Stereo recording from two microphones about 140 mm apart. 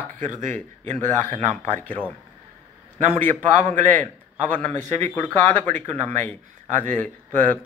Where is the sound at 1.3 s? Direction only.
15° left (ahead or behind).